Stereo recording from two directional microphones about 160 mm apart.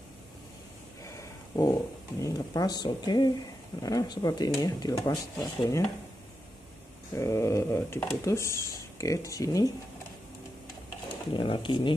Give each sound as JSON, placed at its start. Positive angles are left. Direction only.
{"t": 1.0, "sound": "speech", "side_deg": 20}
{"t": 7.2, "sound": "speech", "side_deg": 20}
{"t": 11.3, "sound": "speech", "side_deg": 30}